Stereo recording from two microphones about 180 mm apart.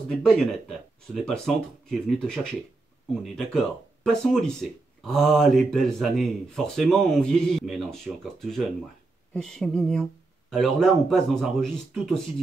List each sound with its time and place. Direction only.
0.1 s speech: 5° left (ahead or behind)